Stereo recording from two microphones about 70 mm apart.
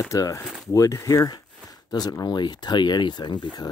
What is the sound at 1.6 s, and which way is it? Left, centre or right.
Speech, left.